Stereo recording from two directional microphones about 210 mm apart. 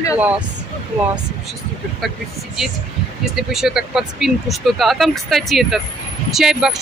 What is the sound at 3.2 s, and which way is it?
Speech, centre (ahead or behind).